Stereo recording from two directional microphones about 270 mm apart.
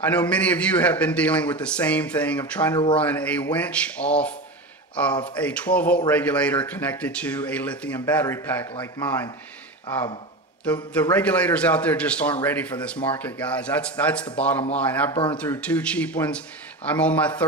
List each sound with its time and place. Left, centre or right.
0.0 s a man's voice: centre
10.6 s a man's voice: centre